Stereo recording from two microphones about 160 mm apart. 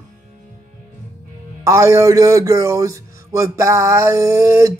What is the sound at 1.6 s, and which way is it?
Speech, 20° right (ahead or behind).